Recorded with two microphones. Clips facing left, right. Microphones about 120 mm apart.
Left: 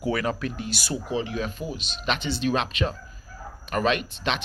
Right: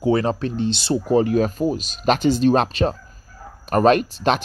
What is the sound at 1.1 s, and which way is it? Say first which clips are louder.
Speech: right 12 dB; 45° right (ahead or behind).